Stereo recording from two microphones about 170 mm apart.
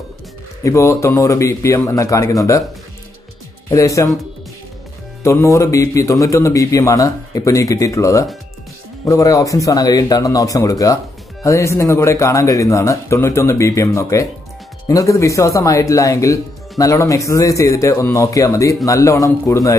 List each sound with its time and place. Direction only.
0.7 s a man's voice: 15° left (ahead or behind)
3.7 s speech: 20° left (ahead or behind)
5.2 s a man's voice: 15° left (ahead or behind)